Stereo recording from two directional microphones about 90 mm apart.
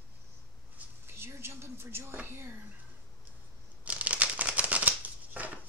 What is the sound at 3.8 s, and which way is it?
Shuffling cards, 15° right (ahead or behind).